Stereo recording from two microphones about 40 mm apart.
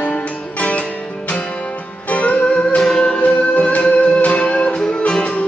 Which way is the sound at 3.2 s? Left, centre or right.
Left.